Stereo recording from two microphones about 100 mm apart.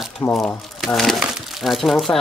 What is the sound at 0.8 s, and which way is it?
Speech, centre (ahead or behind).